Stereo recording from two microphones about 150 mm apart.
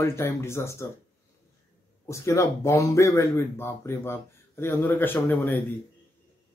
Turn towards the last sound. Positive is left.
turn(degrees=15)  # may be behind; listen again after turning